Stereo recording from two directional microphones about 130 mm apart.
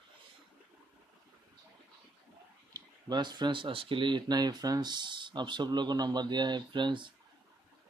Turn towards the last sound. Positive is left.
turn(degrees=-40)  # may be behind; listen again after turning